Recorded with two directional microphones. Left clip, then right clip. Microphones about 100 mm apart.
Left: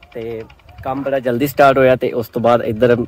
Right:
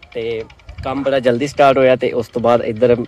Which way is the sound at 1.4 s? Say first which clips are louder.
Left 3 dB; 25° left (ahead or behind).